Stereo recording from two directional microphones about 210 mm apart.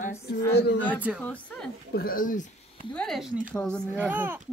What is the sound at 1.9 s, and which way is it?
Speech, 45° left (ahead or behind).